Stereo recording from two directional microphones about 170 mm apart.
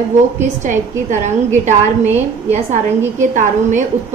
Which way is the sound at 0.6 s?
45° right (ahead or behind).